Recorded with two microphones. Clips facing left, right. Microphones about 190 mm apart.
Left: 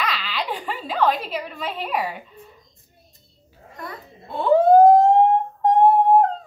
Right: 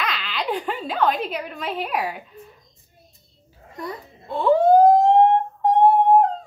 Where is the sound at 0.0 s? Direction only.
Centre (ahead or behind).